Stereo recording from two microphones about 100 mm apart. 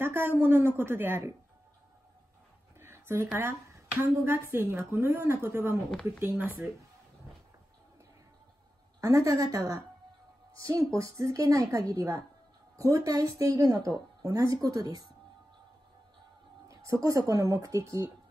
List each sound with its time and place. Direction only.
0.0 s a woman's voice: 20° right (ahead or behind)
2.8 s a sound: 25° right (ahead or behind)
3.3 s a woman's voice: 25° right (ahead or behind)
9.0 s a woman's voice: 35° right (ahead or behind)
16.6 s a woman's voice: 35° right (ahead or behind)